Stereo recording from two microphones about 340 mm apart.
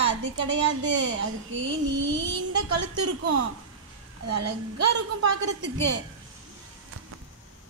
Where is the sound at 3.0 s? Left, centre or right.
Right.